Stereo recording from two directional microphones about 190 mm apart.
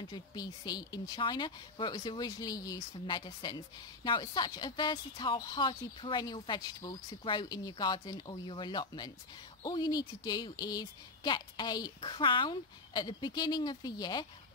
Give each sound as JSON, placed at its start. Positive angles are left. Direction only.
{"t": 0.1, "sound": "speech", "side_deg": 20}